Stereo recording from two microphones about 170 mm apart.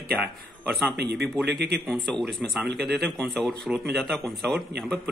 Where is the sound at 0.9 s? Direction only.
75° right (ahead or behind).